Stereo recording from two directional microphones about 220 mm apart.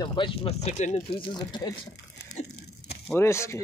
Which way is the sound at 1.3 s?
20° left (ahead or behind).